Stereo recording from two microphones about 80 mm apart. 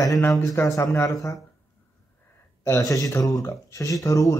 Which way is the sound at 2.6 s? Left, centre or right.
Left.